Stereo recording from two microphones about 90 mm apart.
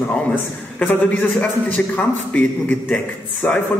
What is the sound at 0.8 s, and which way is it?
A man's voice, 20° left (ahead or behind).